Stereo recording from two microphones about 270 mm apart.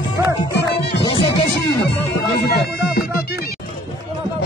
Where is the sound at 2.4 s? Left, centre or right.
Left.